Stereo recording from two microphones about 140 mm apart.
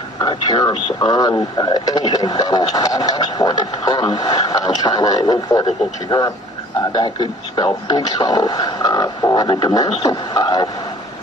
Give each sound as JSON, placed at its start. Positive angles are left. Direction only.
{"t": 0.2, "sound": "speech", "side_deg": 30}